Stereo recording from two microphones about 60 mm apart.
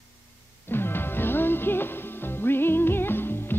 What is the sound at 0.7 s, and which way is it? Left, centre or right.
Music, left.